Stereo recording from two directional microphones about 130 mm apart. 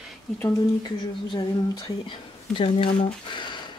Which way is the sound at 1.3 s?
35° left (ahead or behind).